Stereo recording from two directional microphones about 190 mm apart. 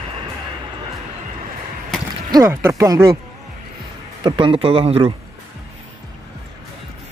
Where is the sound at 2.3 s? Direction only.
15° right (ahead or behind).